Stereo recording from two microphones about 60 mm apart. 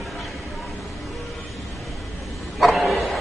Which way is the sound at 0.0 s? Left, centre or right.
Centre.